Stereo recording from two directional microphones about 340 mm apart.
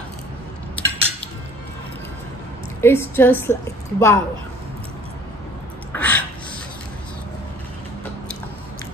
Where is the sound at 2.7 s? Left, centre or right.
Centre.